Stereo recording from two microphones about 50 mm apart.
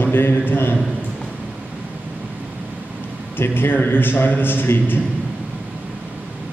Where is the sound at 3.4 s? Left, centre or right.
Left.